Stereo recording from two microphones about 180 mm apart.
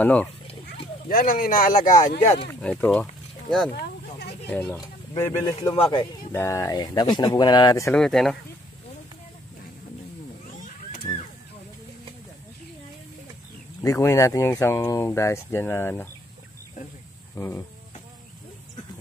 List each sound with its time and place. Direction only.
0.0 s speech: 5° left (ahead or behind)
1.0 s speech: 50° left (ahead or behind)
2.6 s speech: 5° left (ahead or behind)
3.7 s a sound: 65° left (ahead or behind)
4.5 s speech: 10° left (ahead or behind)
4.7 s speech: 20° left (ahead or behind)
6.3 s speech: 15° left (ahead or behind)
7.9 s speech: 5° left (ahead or behind)
11.1 s a sound: 15° left (ahead or behind)
13.8 s speech: 15° left (ahead or behind)
17.4 s speech: 15° left (ahead or behind)